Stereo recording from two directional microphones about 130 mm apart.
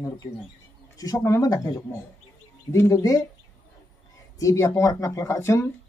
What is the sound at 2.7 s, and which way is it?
Speech, 20° left (ahead or behind).